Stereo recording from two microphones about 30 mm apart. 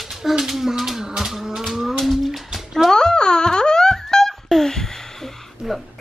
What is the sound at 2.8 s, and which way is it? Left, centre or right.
Wail, left.